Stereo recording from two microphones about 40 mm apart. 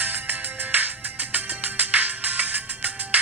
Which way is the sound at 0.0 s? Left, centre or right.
Right.